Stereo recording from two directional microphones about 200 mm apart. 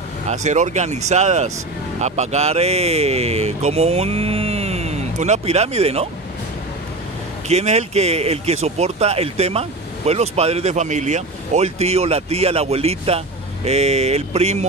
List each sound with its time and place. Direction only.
0.3 s speech: 35° right (ahead or behind)
7.4 s speech: 35° right (ahead or behind)